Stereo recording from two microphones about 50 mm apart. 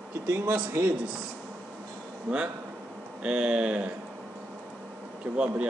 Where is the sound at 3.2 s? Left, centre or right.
Centre.